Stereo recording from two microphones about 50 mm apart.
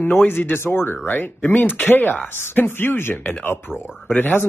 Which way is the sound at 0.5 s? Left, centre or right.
Left.